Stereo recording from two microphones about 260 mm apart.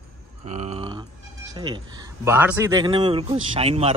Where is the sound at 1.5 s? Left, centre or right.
Centre.